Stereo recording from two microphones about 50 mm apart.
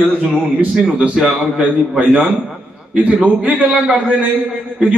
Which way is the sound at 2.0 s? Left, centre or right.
Right.